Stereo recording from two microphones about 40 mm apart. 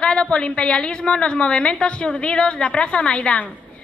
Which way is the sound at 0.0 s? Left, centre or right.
Left.